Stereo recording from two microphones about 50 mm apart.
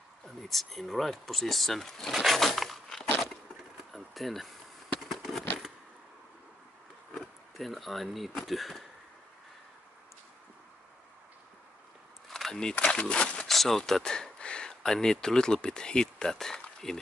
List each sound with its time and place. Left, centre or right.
0.2 s speech: centre
2.1 s a sound: centre
7.2 s speech: centre
12.3 s a sound: centre
12.7 s speech: left
13.0 s speech: centre
13.5 s speech: centre